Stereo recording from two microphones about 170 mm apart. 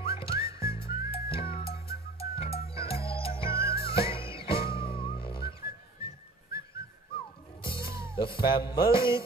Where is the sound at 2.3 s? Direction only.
35° left (ahead or behind).